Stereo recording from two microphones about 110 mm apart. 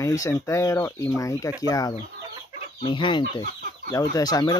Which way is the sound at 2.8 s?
45° left (ahead or behind).